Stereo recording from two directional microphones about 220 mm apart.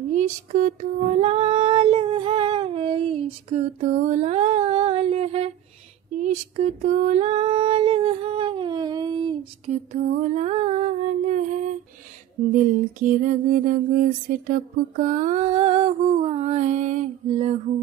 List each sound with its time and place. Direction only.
0.1 s female singing: 35° right (ahead or behind)
10.2 s a sound: 30° right (ahead or behind)
12.5 s mantra: 40° right (ahead or behind)